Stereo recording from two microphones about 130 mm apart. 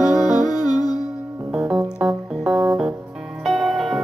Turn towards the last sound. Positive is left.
turn(degrees=-5)  # may be behind; listen again after turning